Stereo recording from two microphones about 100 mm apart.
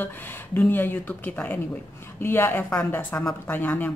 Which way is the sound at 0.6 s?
20° left (ahead or behind).